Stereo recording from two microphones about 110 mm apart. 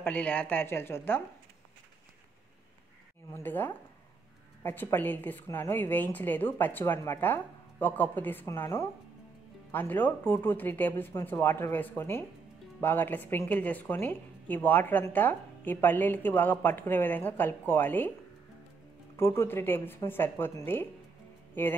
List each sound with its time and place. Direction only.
0.0 s speech: 15° left (ahead or behind)
3.3 s a woman's voice: 15° left (ahead or behind)
19.1 s speech: 25° left (ahead or behind)
21.6 s speech: 20° left (ahead or behind)